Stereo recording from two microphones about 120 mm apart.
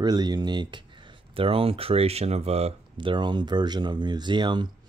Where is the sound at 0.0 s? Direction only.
35° right (ahead or behind).